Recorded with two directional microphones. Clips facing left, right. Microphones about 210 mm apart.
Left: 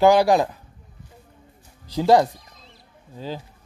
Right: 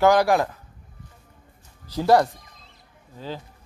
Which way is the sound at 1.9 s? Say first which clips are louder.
Left 2 dB; 15° left (ahead or behind).